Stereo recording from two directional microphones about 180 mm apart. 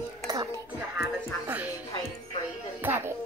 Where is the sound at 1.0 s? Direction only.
10° right (ahead or behind).